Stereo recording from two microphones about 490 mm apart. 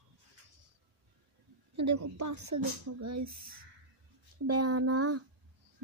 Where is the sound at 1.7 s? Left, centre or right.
Right.